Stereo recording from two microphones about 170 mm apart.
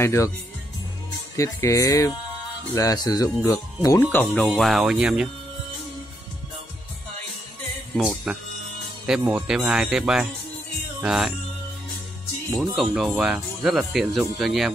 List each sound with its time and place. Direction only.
0.0 s speech: 15° left (ahead or behind)
1.3 s speech: 20° left (ahead or behind); by 5.3 s 5° right (ahead or behind)
8.0 s speech: 5° right (ahead or behind)
12.4 s speech: centre (ahead or behind)